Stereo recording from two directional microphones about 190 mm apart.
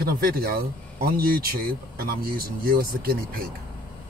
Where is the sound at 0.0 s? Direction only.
55° right (ahead or behind).